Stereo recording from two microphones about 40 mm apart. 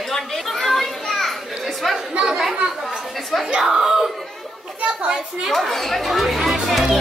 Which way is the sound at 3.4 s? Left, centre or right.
Centre.